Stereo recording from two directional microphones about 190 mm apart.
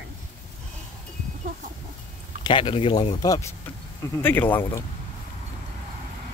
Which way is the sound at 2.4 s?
25° left (ahead or behind).